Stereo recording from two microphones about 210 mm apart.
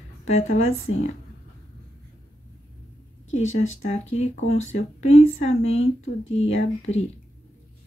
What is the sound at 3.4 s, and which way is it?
Speech, 75° left (ahead or behind).